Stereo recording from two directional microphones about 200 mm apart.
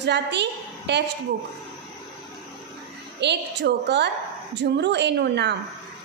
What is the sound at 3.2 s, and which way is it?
A woman's voice, 60° right (ahead or behind).